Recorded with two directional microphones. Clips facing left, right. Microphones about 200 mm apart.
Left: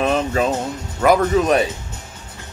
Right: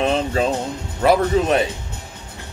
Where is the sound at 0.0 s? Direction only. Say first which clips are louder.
Left 1 dB; 30° right (ahead or behind).